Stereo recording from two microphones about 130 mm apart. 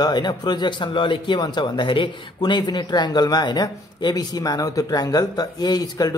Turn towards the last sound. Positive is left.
turn(degrees=30)  # may be behind; listen again after turning